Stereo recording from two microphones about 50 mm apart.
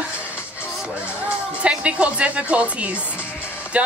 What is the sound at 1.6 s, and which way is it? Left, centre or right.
A woman's voice, right.